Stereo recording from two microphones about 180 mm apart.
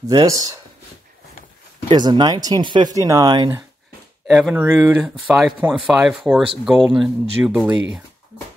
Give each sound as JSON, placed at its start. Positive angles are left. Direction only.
{"t": 0.1, "sound": "speech", "side_deg": -20}
{"t": 1.9, "sound": "speech", "side_deg": -25}
{"t": 4.3, "sound": "speech", "side_deg": -5}